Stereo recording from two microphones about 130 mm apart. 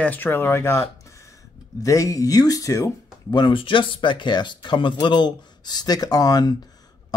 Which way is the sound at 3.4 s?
40° left (ahead or behind).